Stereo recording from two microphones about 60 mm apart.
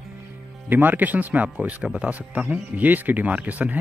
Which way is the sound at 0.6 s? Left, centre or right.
Right.